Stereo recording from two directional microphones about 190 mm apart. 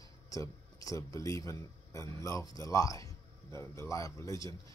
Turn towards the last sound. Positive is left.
turn(degrees=15)  # may be behind; listen again after turning